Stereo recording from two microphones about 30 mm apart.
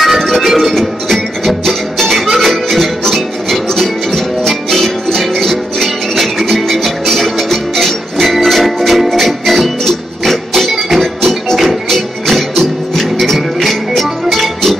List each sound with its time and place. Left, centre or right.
0.0 s music: centre
6.7 s music: centre